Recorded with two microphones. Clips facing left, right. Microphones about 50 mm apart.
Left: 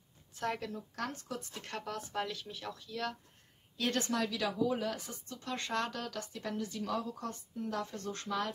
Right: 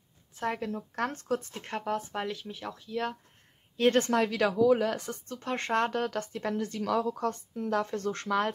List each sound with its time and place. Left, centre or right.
0.7 s speech: right
1.7 s speech: right
3.7 s a woman's voice: right
4.6 s a woman's voice: right
5.4 s speech: right
6.8 s a woman's voice: right